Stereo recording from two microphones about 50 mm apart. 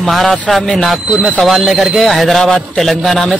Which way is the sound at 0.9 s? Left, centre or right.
Centre.